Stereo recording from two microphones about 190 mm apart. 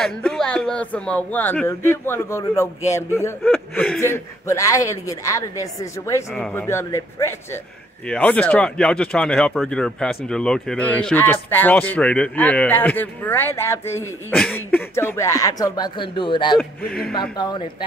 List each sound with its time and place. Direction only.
0.0 s speech: 5° left (ahead or behind)
3.5 s speech: centre (ahead or behind)
4.0 s speech: 15° left (ahead or behind)
16.8 s speech: 50° left (ahead or behind)
17.4 s speech: 25° left (ahead or behind)